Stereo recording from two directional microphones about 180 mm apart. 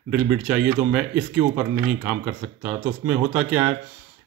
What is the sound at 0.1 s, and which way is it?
Speech, 5° right (ahead or behind).